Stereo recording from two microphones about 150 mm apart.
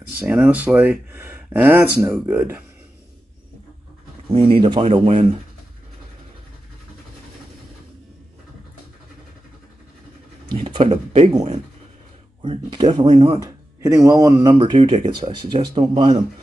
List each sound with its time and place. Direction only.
0.2 s speech: 10° right (ahead or behind)
4.3 s speech: 35° right (ahead or behind)
10.5 s speech: 35° right (ahead or behind)
12.4 s speech: 35° right (ahead or behind)
13.4 s speech: 20° right (ahead or behind)